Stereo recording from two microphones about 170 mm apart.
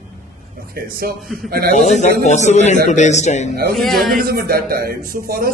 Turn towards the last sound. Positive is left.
turn(degrees=-60)  # may be behind; listen again after turning